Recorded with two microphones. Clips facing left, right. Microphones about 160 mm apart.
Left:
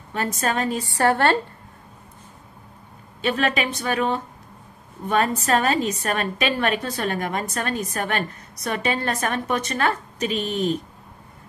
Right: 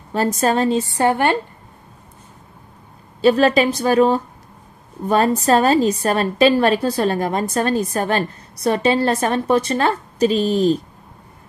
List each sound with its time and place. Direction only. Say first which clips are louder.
0.1 s a woman's voice: right 7 dB; 35° right (ahead or behind); by 1.4 s 15° right (ahead or behind)
3.2 s a woman's voice: right 9 dB; 35° right (ahead or behind)